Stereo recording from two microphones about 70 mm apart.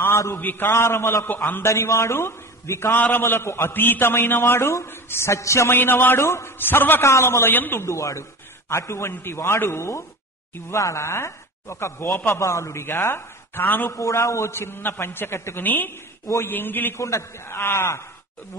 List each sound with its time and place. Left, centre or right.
0.0 s a sound: left
0.4 s a man's voice: left
3.0 s a man's voice: left
5.8 s a man's voice: left
7.0 s a man's voice: left
7.8 s a man's voice: left
13.9 s a man's voice: left
17.0 s speech: left